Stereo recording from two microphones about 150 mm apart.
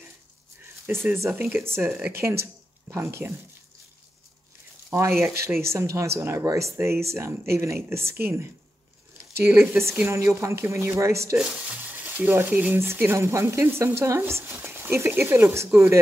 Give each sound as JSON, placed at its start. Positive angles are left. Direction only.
{"t": 0.8, "sound": "stir", "side_deg": -15}
{"t": 2.0, "sound": "speech", "side_deg": -10}
{"t": 4.9, "sound": "speech", "side_deg": -20}
{"t": 5.7, "sound": "stir", "side_deg": -20}
{"t": 11.3, "sound": "stir", "side_deg": -5}